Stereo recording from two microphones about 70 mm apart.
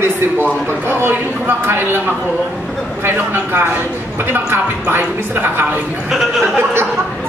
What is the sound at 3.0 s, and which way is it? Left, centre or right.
A woman's voice, right.